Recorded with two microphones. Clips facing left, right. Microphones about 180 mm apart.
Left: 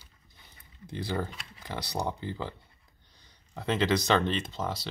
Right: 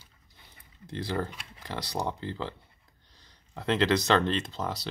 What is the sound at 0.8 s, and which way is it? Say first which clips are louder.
Speech: right 1 dB; centre (ahead or behind).